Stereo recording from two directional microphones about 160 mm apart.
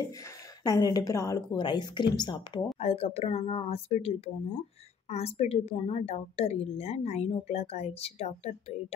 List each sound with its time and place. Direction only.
0.7 s a woman's voice: 25° left (ahead or behind)
2.8 s a woman's voice: 40° left (ahead or behind)